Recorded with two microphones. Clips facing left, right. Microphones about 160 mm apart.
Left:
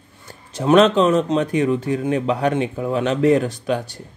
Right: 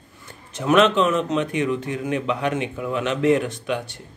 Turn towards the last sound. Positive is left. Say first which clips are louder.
# left 4 dB
turn(degrees=40)  # may be behind; listen again after turning